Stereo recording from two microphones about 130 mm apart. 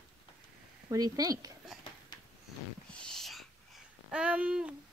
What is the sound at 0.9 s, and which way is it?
Speech, 30° right (ahead or behind).